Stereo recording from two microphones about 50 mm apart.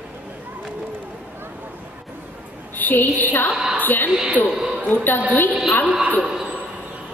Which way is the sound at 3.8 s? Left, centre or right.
Left.